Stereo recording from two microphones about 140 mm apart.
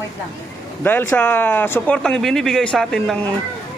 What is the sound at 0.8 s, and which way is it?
Speech, 15° left (ahead or behind).